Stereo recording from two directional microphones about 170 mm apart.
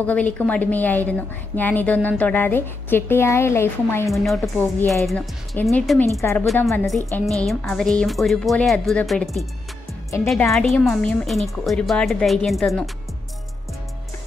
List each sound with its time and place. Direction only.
0.0 s a woman's voice: 10° left (ahead or behind)
4.1 s a woman's voice: centre (ahead or behind)
10.5 s a woman's voice: centre (ahead or behind)